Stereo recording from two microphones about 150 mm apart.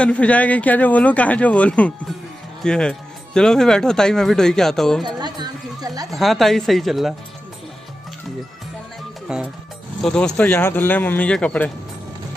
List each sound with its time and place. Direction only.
0.0 s speech: 10° left (ahead or behind)
5.0 s a sound: 30° right (ahead or behind)
6.1 s speech: centre (ahead or behind)
9.3 s speech: 5° right (ahead or behind)
10.0 s speech: 5° left (ahead or behind)